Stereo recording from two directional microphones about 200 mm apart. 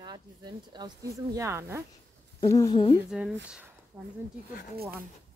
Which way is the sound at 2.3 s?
20° left (ahead or behind).